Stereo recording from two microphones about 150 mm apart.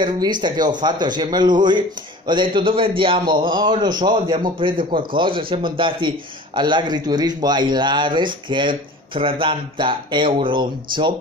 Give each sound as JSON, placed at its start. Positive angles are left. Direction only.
{"t": 0.0, "sound": "a man's voice", "side_deg": -30}